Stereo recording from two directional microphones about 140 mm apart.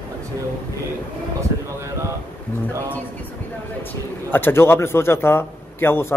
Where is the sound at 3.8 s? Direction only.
15° left (ahead or behind).